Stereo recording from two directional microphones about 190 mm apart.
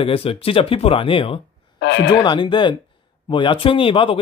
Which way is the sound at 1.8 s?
70° left (ahead or behind).